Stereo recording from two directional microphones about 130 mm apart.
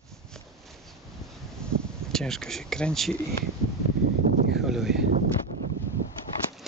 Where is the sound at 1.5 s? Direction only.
5° left (ahead or behind).